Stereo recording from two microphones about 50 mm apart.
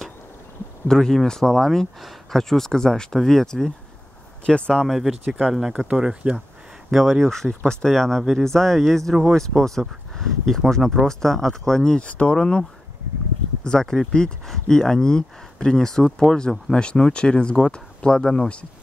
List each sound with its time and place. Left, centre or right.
0.8 s speech: centre
4.8 s speech: centre
6.9 s speech: centre
12.0 s speech: left
13.7 s speech: centre